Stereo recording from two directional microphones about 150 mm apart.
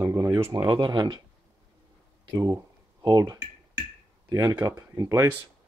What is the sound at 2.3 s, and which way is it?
Speech, 25° right (ahead or behind).